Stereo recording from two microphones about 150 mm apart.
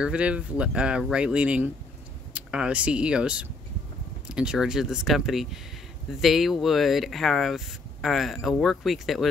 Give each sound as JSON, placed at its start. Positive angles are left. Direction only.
{"t": 0.0, "sound": "speech", "side_deg": -10}